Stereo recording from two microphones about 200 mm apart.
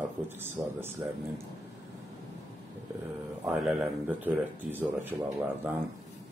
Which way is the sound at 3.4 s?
5° right (ahead or behind).